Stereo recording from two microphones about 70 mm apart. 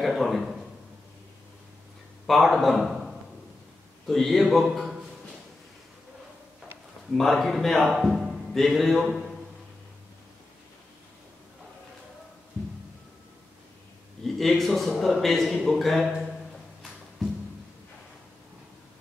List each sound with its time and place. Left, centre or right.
0.0 s a man's voice: centre
2.2 s a man's voice: centre
7.1 s a man's voice: centre
14.2 s a man's voice: centre